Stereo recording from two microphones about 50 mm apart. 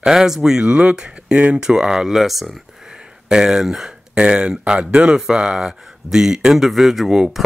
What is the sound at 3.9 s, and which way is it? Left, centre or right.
Speech, centre.